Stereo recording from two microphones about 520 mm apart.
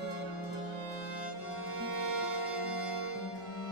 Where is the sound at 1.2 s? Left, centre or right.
Right.